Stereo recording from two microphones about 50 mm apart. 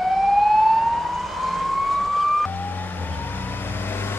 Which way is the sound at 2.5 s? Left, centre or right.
Left.